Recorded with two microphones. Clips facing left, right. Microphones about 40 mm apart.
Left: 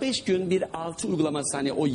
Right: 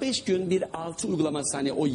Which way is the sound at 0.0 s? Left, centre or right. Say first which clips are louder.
Left 1 dB; centre.